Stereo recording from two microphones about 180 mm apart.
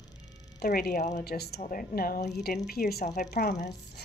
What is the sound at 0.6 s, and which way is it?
Speech, 55° left (ahead or behind).